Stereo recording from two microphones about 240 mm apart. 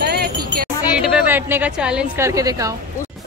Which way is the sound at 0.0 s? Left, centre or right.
Right.